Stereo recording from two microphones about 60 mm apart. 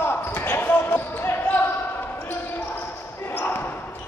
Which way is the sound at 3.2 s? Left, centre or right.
Left.